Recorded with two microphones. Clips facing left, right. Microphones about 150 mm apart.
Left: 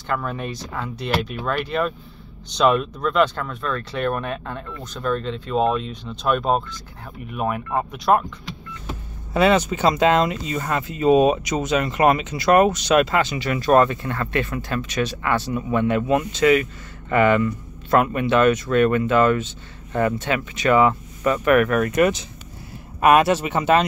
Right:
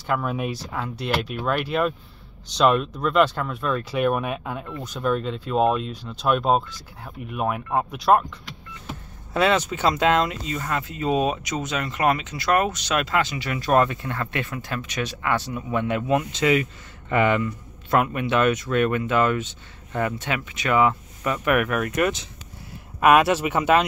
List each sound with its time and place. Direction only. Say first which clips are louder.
0.0 s speech: right 1 dB; 5° right (ahead or behind)
9.3 s speech: left 3 dB; 5° left (ahead or behind)
16.3 s speech: left 4 dB; 20° right (ahead or behind); by 23.9 s 5° right (ahead or behind)